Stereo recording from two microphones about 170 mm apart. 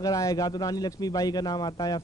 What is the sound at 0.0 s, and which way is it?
A man's voice, 20° left (ahead or behind).